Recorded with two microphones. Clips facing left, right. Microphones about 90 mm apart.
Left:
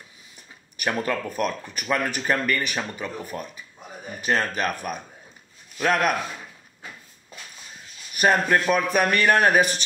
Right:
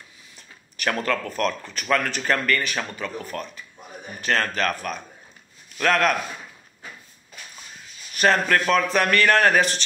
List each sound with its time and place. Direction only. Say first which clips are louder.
0.7 s a man's voice: right 1 dB; 15° left (ahead or behind)
8.2 s a man's voice: even; 15° left (ahead or behind)